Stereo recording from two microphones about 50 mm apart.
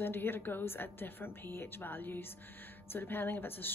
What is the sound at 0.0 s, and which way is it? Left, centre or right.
Speech, left.